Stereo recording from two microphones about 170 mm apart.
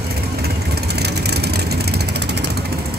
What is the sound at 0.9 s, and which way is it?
Vehicle, 75° right (ahead or behind).